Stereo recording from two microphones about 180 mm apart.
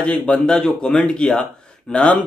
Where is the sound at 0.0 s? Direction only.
5° left (ahead or behind).